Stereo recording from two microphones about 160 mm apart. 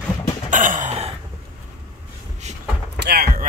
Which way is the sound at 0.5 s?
55° right (ahead or behind).